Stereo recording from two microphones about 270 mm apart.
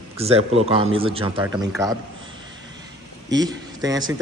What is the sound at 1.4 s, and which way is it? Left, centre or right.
Speech, centre.